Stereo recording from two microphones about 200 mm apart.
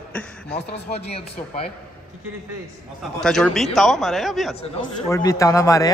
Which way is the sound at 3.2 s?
Centre (ahead or behind).